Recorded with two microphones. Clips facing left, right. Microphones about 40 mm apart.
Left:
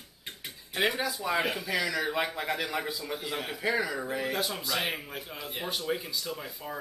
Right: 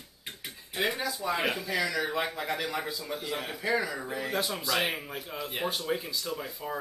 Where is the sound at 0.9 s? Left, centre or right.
Centre.